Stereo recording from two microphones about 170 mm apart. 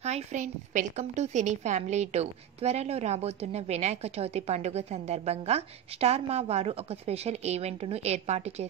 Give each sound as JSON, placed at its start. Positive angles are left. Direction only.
{"t": 0.0, "sound": "a woman's voice", "side_deg": -45}